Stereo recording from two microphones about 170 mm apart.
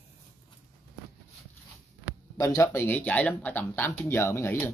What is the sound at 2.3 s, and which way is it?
Speech, 20° left (ahead or behind).